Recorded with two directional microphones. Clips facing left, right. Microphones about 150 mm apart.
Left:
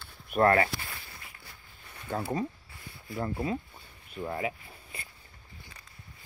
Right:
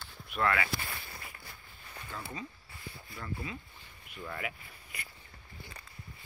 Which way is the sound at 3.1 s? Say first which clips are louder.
Left 10 dB; 40° left (ahead or behind).